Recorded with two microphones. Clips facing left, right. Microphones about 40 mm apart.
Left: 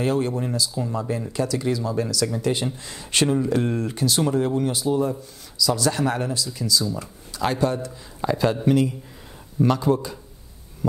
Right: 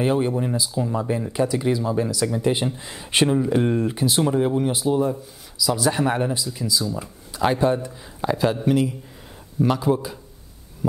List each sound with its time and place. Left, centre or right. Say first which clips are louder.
0.0 s speech: right 2 dB; centre
5.0 s speech: right 2 dB; centre
8.3 s speech: even; centre